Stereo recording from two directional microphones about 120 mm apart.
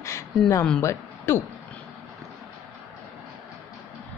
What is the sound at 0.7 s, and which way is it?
Speech, 20° left (ahead or behind).